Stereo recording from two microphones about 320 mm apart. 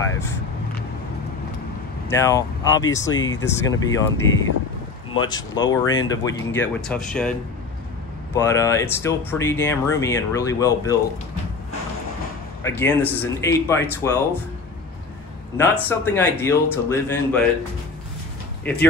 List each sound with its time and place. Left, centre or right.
2.0 s speech: centre
5.3 s speech: centre
8.4 s speech: centre
12.6 s speech: centre
15.5 s speech: centre
18.6 s speech: centre